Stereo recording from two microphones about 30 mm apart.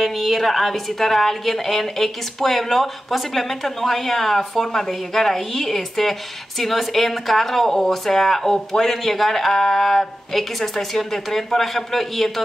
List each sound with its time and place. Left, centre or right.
0.0 s a woman's voice: centre